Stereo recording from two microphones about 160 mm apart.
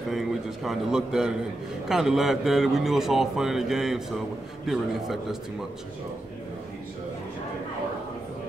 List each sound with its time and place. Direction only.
0.1 s a man's voice: centre (ahead or behind)